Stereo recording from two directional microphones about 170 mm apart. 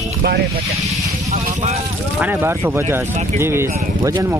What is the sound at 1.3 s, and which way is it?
Speech, 40° right (ahead or behind).